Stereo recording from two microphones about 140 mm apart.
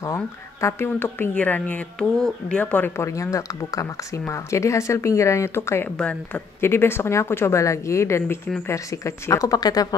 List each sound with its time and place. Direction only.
0.0 s speech: 20° left (ahead or behind)